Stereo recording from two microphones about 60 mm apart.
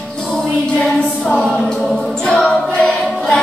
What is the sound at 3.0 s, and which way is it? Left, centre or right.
Music, centre.